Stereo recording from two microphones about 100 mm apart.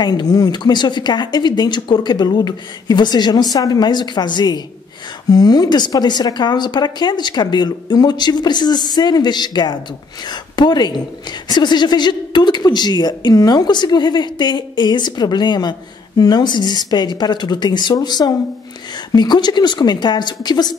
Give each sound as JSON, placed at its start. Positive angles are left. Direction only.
{"t": 0.0, "sound": "speech", "side_deg": 45}